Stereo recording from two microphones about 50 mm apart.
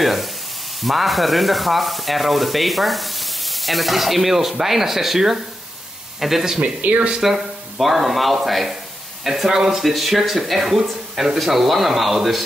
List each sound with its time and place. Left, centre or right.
0.0 s sizzle: centre
0.8 s sanding: centre
6.6 s speech: right
7.2 s sanding: centre